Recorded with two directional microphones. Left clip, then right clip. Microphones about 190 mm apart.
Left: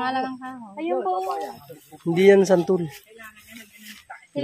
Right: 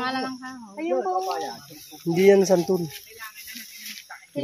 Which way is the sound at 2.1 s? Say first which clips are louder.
Left 2 dB; 15° left (ahead or behind).